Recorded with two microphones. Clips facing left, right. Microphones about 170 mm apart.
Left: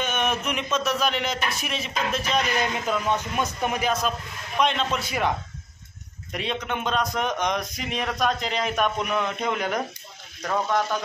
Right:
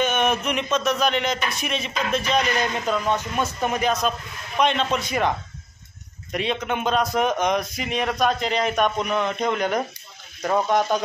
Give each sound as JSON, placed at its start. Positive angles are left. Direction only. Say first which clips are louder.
{"t": 0.0, "sound": "speech", "louder": "right 4 dB", "side_deg": 0}
{"t": 6.3, "sound": "speech", "louder": "right 4 dB", "side_deg": 0}
{"t": 10.4, "sound": "speech", "louder": "right 4 dB", "side_deg": -20}